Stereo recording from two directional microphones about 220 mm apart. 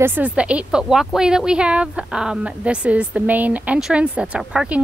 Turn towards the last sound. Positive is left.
turn(degrees=0)  # may be behind; listen again after turning